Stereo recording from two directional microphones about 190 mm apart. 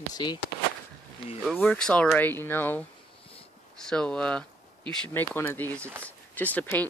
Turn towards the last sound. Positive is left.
turn(degrees=10)  # may be behind; listen again after turning